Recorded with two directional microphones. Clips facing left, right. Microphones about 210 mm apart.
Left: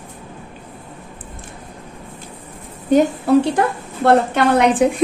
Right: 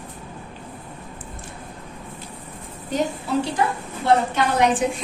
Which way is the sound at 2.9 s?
60° left (ahead or behind).